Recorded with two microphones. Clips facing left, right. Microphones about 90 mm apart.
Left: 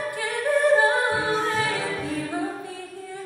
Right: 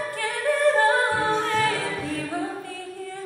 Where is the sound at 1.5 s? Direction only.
55° right (ahead or behind).